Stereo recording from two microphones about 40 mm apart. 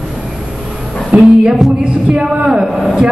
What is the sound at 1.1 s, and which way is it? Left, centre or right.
Speech, right.